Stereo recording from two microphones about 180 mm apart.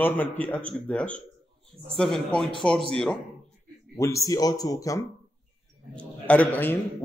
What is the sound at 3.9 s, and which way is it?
A man's voice, 15° left (ahead or behind).